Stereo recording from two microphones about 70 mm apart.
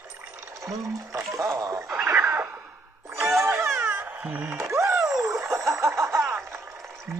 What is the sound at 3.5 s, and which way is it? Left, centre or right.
Music, right.